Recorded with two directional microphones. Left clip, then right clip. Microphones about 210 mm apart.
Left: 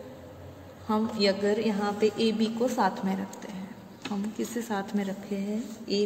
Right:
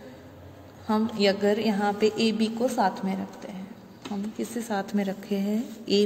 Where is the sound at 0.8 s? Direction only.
25° right (ahead or behind).